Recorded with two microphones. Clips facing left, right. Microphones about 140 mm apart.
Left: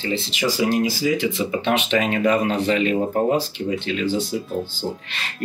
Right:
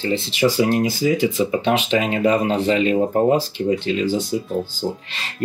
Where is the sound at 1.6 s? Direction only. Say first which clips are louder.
Right 2 dB; 30° right (ahead or behind).